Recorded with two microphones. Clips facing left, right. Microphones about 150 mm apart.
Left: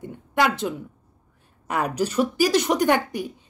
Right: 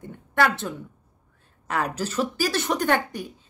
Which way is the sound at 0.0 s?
15° left (ahead or behind).